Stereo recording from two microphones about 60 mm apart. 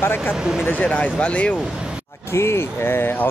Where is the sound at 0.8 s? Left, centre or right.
Centre.